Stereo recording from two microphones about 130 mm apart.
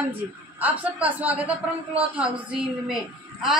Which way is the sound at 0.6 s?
10° right (ahead or behind).